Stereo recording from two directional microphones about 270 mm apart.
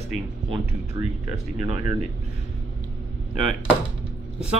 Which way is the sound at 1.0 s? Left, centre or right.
Left.